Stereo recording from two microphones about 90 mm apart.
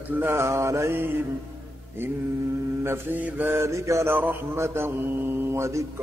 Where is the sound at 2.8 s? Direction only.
25° right (ahead or behind).